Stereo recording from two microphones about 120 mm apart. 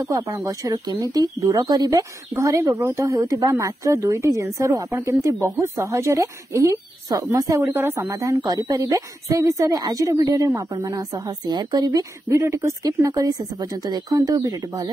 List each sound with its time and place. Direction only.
0.1 s a woman's voice: 25° right (ahead or behind)